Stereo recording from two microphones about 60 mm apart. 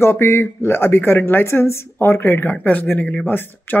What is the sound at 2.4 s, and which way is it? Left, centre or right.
Speech, left.